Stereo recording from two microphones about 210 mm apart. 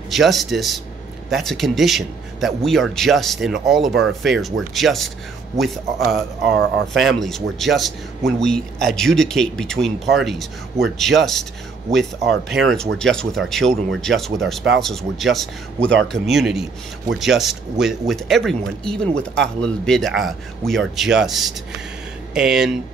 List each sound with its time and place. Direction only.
0.1 s a man's voice: centre (ahead or behind)
5.9 s speech: 50° right (ahead or behind)
6.9 s a man's voice: centre (ahead or behind)
12.2 s speech: 50° right (ahead or behind)
12.5 s a man's voice: centre (ahead or behind)